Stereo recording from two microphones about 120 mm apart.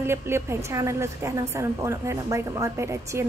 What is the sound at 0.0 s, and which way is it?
A woman's voice, 20° right (ahead or behind).